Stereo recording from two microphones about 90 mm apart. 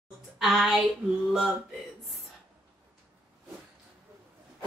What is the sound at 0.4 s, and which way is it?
Speech, centre (ahead or behind).